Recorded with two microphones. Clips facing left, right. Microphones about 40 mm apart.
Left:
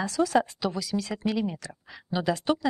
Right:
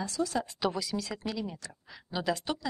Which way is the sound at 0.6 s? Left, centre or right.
Centre.